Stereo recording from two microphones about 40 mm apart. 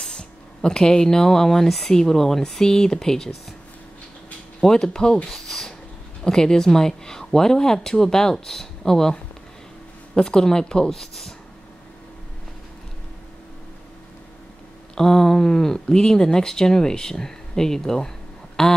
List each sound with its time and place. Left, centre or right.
0.0 s speech: centre
4.6 s speech: centre
15.0 s speech: centre